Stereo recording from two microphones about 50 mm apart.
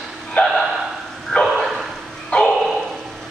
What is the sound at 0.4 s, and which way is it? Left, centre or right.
Speech, left.